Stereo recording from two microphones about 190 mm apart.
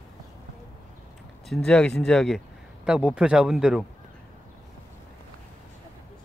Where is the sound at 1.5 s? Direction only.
5° left (ahead or behind).